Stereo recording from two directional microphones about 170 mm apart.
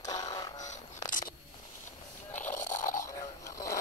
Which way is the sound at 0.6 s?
45° left (ahead or behind).